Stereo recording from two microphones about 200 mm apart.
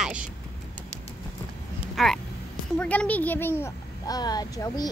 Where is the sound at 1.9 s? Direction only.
Centre (ahead or behind).